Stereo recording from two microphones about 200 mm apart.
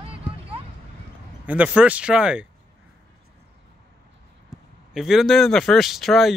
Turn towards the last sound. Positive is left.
turn(degrees=0)  # may be behind; listen again after turning